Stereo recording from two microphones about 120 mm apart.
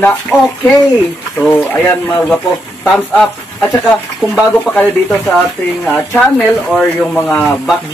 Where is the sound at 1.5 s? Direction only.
15° left (ahead or behind).